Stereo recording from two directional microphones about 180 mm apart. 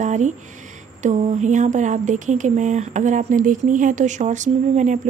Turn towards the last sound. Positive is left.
turn(degrees=-40)  # may be behind; listen again after turning